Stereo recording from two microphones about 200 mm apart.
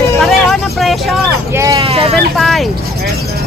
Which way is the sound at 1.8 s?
30° right (ahead or behind).